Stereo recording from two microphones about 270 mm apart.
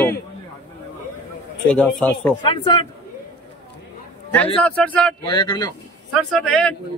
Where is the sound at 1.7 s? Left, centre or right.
Centre.